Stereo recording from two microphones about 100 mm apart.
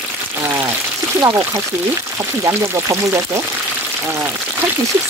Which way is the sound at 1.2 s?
30° right (ahead or behind).